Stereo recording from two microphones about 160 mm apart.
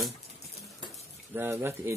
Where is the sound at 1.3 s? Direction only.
15° right (ahead or behind).